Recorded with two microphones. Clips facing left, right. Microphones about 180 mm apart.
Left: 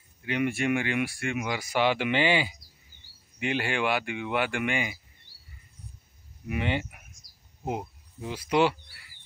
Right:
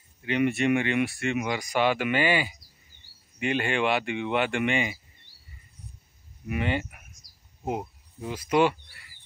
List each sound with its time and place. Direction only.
0.3 s speech: 10° left (ahead or behind)
6.5 s speech: 15° left (ahead or behind)
8.3 s speech: 10° left (ahead or behind)